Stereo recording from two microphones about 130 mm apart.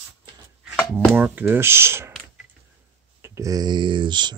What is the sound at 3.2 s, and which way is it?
Speech, 25° right (ahead or behind).